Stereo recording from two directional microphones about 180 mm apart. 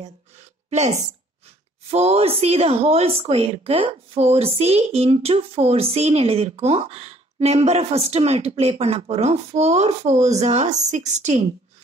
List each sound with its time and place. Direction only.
0.7 s speech: 40° right (ahead or behind)